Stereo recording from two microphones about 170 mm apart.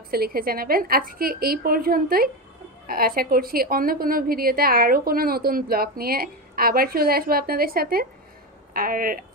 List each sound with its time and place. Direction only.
0.1 s a woman's voice: 60° right (ahead or behind)